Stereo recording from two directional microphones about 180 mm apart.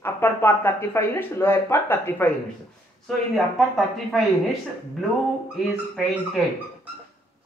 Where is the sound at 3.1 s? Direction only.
Centre (ahead or behind).